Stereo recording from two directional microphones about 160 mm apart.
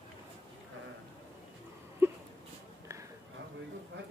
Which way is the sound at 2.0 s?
15° right (ahead or behind).